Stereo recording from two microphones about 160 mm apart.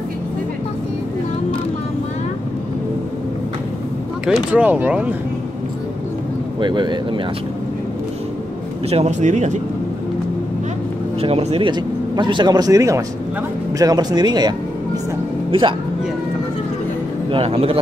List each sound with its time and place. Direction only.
4.3 s speech: 5° right (ahead or behind)
6.6 s speech: 30° right (ahead or behind)
8.8 s speech: 40° right (ahead or behind)
11.1 s speech: 40° right (ahead or behind)
11.7 s speech: 30° right (ahead or behind)
15.5 s speech: 35° right (ahead or behind)
17.3 s speech: 35° right (ahead or behind)